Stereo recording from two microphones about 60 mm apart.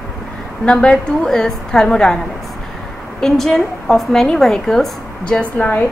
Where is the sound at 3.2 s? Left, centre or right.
Centre.